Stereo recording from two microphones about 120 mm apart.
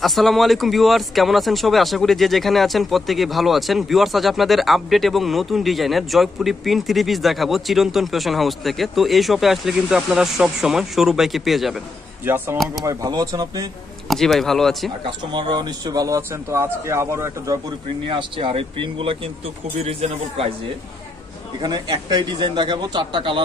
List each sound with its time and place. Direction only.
0.0 s speech: centre (ahead or behind)
12.8 s a man's voice: 30° right (ahead or behind)
14.0 s speech: centre (ahead or behind)
15.0 s a man's voice: 40° right (ahead or behind); by 17.6 s 25° right (ahead or behind)
18.0 s speech: 45° right (ahead or behind)
21.5 s a man's voice: 35° right (ahead or behind)